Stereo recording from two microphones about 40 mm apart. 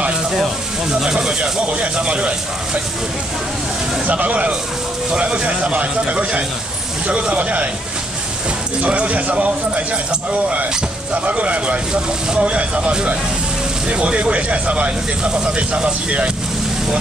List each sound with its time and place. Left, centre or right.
1.0 s speech: centre
1.7 s speech: right
4.1 s speech: right
8.8 s speech: right
11.2 s speech: right
11.9 s speech: right